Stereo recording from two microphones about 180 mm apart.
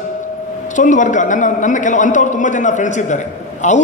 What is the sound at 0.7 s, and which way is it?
A man's voice, 45° left (ahead or behind).